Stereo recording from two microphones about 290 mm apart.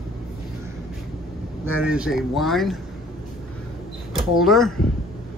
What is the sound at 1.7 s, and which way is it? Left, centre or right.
Speech, centre.